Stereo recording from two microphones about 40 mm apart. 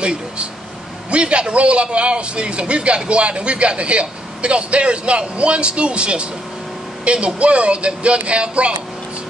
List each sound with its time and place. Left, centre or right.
0.0 s air conditioning: right
1.1 s a man's voice: right